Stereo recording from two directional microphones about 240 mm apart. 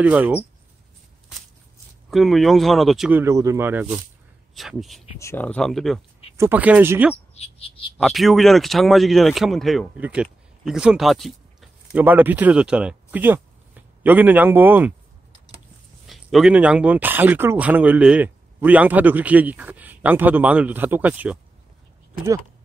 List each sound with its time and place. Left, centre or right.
0.0 s speech: centre
2.0 s speech: centre
7.3 s speech: left
8.0 s speech: centre
16.1 s speech: centre